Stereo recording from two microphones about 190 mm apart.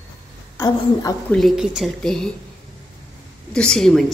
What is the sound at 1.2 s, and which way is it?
A woman's voice, centre (ahead or behind).